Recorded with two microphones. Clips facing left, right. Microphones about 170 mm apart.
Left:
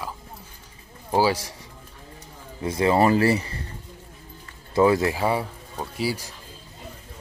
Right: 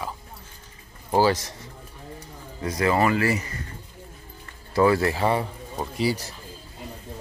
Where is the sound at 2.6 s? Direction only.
25° left (ahead or behind).